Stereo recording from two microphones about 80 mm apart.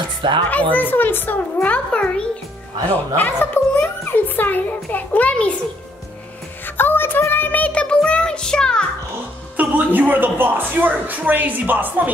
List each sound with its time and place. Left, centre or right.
0.5 s a child's voice: centre
3.2 s a child's voice: left
6.6 s child singing: left; by 8.8 s centre
9.6 s speech: right